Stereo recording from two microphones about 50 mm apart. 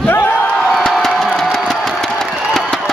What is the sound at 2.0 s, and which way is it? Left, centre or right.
Crowd, centre.